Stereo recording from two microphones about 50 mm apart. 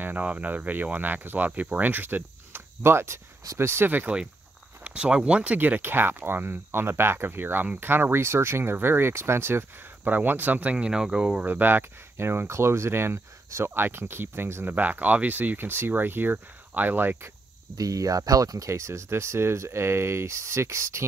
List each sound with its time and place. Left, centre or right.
0.2 s speech: right
4.1 s speech: centre
5.6 s speech: right
10.9 s speech: centre
11.4 s speech: right
12.4 s speech: right
13.8 s speech: right
14.9 s speech: right
18.6 s speech: right